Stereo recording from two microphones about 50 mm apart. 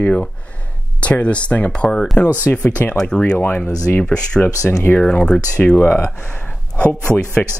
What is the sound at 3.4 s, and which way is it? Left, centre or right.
Speech, left.